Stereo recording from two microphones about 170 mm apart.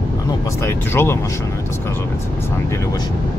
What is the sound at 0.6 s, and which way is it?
Speech, 15° left (ahead or behind).